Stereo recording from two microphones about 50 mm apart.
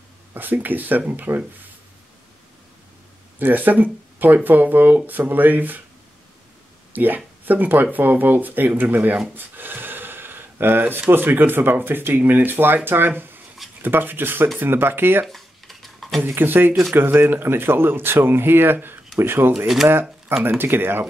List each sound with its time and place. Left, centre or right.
0.3 s speech: right
3.3 s speech: right
6.9 s a sound: right
7.4 s speech: right
15.2 s dishes: centre
16.2 s speech: right